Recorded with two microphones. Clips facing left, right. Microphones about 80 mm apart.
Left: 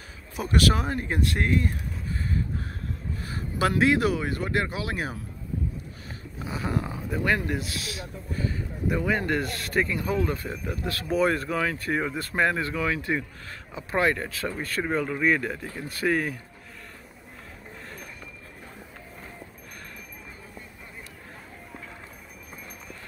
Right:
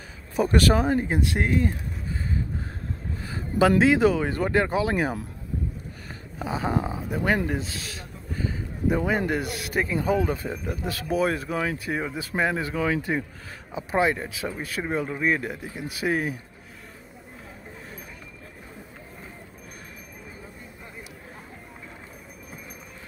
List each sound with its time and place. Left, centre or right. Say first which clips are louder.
0.4 s speech: right 4 dB; right
0.8 s speech: right 4 dB; centre
3.2 s speech: right 6 dB; right
6.4 s speech: right 4 dB; right
11.1 s speech: left 1 dB; centre